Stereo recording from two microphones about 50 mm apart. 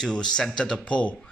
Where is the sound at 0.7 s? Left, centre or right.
Left.